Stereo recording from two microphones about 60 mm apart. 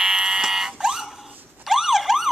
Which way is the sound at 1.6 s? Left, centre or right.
Centre.